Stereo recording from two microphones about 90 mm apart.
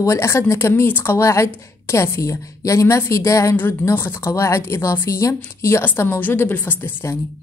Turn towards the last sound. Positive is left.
turn(degrees=25)  # may be behind; listen again after turning